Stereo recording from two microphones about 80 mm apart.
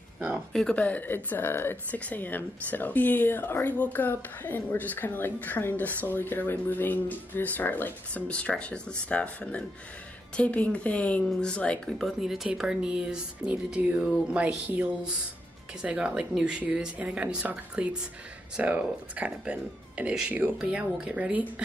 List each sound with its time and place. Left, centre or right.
0.5 s speech: centre
0.7 s speech: centre
12.0 s a woman's voice: centre